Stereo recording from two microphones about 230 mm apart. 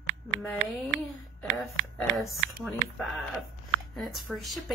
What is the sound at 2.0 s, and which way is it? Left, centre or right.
A woman's voice, centre.